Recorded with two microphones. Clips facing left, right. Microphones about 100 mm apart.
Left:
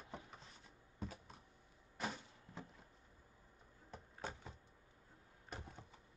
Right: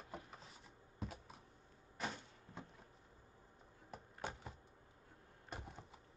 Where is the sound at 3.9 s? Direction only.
10° right (ahead or behind).